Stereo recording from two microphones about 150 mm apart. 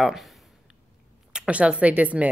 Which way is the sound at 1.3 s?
5° right (ahead or behind).